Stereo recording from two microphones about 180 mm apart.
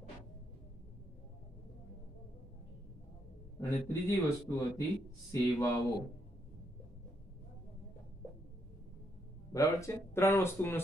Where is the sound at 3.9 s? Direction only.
15° left (ahead or behind).